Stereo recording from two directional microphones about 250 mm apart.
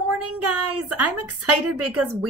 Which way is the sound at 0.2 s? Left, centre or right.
Right.